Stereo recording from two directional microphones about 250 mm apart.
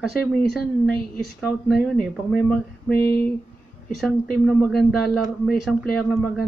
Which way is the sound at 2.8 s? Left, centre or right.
Left.